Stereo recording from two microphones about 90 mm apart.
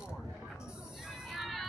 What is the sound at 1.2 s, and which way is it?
Music, centre (ahead or behind).